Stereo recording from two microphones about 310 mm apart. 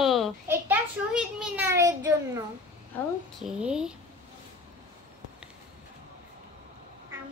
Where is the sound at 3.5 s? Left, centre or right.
Centre.